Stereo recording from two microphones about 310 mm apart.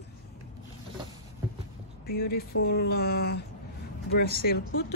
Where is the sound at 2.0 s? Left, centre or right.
Left.